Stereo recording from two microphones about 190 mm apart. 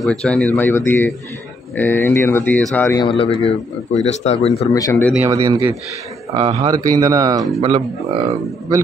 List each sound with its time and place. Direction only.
0.0 s speech: centre (ahead or behind)
3.0 s a man's voice: 30° left (ahead or behind)
4.7 s speech: 20° left (ahead or behind)
5.1 s speech: 15° right (ahead or behind)
6.3 s speech: 30° right (ahead or behind)
8.3 s speech: 15° right (ahead or behind)